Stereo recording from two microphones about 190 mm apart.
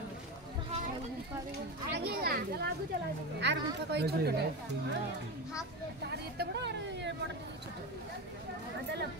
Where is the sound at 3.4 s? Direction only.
65° right (ahead or behind).